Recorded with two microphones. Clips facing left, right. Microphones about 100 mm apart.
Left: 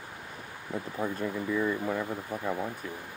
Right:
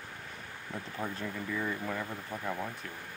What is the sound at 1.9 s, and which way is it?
Speech, 20° left (ahead or behind).